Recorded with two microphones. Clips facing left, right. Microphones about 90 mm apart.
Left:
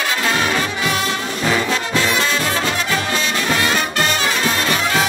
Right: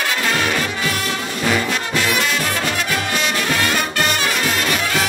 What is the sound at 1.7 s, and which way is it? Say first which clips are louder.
Brass instrument: left 1 dB; 30° left (ahead or behind).